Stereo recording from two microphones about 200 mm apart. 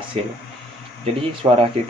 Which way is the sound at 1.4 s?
25° right (ahead or behind).